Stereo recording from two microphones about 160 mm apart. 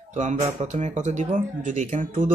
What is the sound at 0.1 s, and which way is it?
Speech, 50° right (ahead or behind).